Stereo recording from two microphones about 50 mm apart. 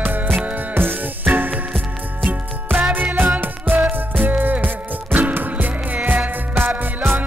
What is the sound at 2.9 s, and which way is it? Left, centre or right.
Music, right.